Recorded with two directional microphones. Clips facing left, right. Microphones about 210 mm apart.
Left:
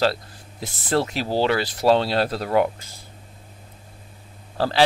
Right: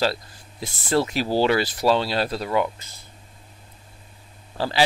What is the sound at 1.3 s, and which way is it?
Speech, 10° right (ahead or behind).